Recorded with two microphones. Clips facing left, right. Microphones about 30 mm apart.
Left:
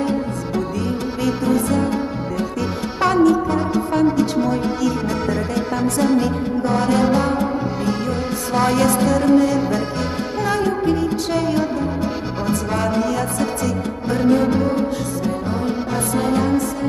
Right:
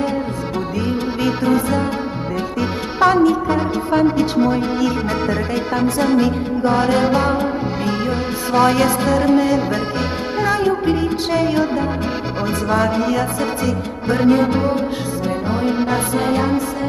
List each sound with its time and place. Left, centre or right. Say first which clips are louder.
0.6 s music: right 1 dB; right